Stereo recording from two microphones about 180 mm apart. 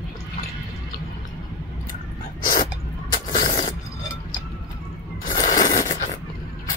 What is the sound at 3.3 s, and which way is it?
Rub, 45° left (ahead or behind).